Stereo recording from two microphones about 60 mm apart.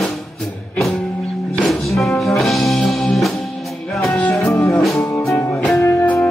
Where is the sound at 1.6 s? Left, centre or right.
Centre.